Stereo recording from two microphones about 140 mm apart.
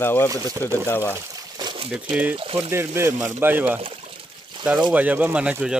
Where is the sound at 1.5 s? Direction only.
30° right (ahead or behind).